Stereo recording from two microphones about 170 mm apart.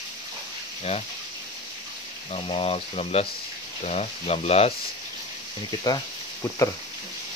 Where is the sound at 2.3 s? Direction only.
35° left (ahead or behind).